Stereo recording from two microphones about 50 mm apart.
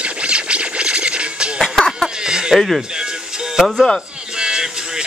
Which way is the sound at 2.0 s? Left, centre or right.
Centre.